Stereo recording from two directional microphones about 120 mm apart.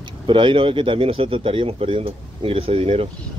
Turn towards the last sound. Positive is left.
turn(degrees=-55)  # may be behind; listen again after turning